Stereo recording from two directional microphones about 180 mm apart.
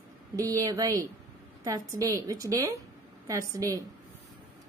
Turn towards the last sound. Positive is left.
turn(degrees=-15)  # may be behind; listen again after turning